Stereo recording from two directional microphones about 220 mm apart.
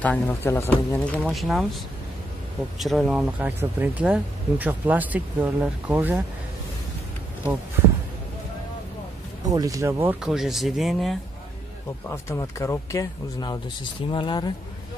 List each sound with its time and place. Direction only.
0.0 s speech: 5° left (ahead or behind)
2.8 s speech: centre (ahead or behind)
9.4 s speech: 15° right (ahead or behind); by 11.1 s centre (ahead or behind)
12.3 s speech: 15° left (ahead or behind)